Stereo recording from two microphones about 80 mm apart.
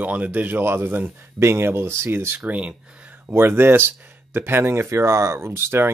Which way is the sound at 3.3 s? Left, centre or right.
Right.